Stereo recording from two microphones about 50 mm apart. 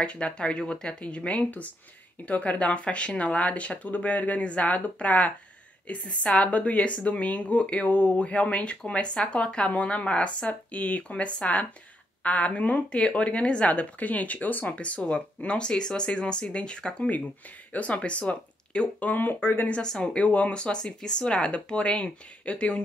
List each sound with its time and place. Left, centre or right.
0.0 s speech: left
19.0 s speech: left
19.7 s speech: centre
20.2 s speech: left